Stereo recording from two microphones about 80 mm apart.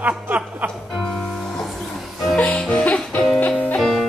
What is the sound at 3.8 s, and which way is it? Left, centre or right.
Music, centre.